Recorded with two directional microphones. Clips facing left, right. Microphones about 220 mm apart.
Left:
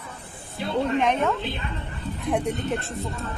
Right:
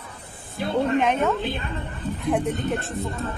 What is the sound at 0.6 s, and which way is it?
Speech, 50° right (ahead or behind).